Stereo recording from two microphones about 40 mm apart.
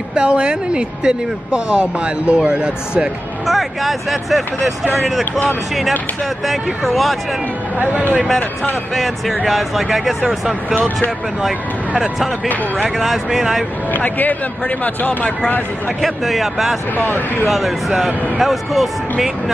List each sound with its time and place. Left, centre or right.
0.1 s speech: right
3.4 s speech: centre
6.4 s speech: centre
8.9 s speech: centre
13.0 s speech: centre
13.9 s speech: left
16.0 s speech: centre
16.9 s speech: left
17.5 s speech: centre